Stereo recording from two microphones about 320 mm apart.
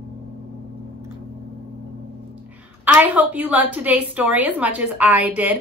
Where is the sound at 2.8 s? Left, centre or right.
Centre.